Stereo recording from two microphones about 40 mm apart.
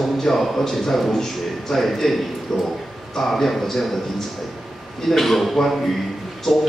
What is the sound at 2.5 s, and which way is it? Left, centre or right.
A man's voice, centre.